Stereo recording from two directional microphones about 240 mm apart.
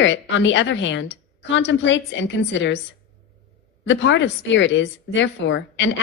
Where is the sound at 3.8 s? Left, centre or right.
Left.